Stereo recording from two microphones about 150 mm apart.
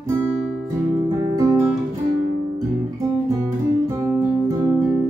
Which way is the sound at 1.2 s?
25° right (ahead or behind).